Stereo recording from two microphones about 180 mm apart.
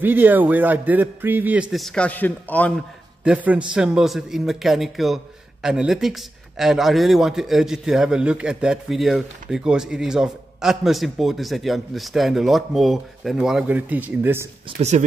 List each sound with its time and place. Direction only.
0.0 s a man's voice: 10° right (ahead or behind); by 2.7 s 10° left (ahead or behind)
3.3 s a man's voice: 5° right (ahead or behind)
14.8 s speech: 40° right (ahead or behind)